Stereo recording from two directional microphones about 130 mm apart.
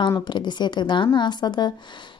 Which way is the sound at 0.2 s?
35° left (ahead or behind).